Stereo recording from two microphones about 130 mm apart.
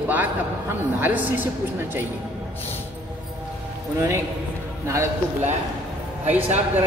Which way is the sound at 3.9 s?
20° right (ahead or behind).